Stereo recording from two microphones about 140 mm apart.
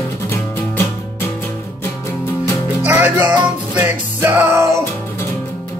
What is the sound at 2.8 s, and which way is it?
Music, 10° right (ahead or behind).